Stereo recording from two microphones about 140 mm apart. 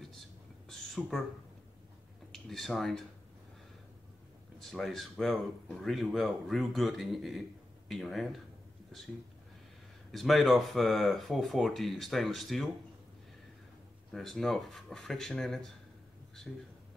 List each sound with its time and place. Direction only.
0.7 s a sound: centre (ahead or behind)
2.3 s speech: 5° left (ahead or behind)
4.6 s speech: centre (ahead or behind)
10.1 s speech: centre (ahead or behind)
14.1 s speech: centre (ahead or behind)